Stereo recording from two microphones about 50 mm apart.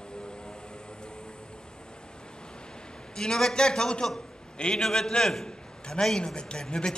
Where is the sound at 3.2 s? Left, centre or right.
Centre.